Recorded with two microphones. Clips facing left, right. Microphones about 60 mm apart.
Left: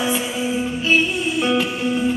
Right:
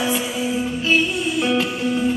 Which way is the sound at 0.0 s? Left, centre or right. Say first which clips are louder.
Even; centre.